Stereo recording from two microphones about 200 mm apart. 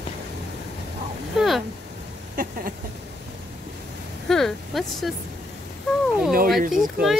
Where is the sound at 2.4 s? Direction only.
45° right (ahead or behind).